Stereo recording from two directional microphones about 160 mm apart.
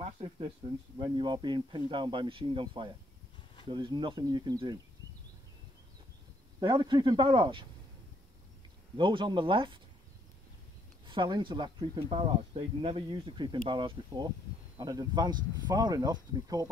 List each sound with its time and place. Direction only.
0.0 s speech: 35° right (ahead or behind)
6.6 s speech: 30° right (ahead or behind)
8.9 s speech: 30° right (ahead or behind)
11.1 s speech: 30° right (ahead or behind)